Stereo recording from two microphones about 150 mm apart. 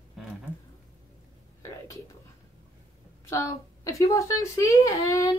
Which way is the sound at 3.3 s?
20° left (ahead or behind).